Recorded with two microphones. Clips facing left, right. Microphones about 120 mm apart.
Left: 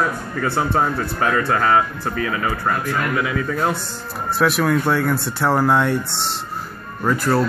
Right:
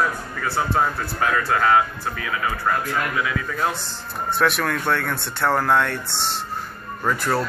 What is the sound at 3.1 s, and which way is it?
Speech, 25° left (ahead or behind).